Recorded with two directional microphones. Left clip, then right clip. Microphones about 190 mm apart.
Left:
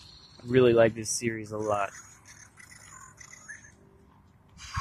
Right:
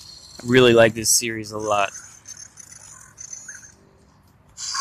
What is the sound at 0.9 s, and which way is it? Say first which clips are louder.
Speech: right 10 dB; 5° right (ahead or behind).